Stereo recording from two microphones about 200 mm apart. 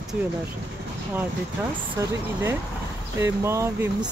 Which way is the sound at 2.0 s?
15° right (ahead or behind).